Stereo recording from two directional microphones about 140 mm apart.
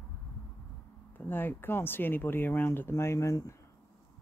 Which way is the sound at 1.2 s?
15° left (ahead or behind).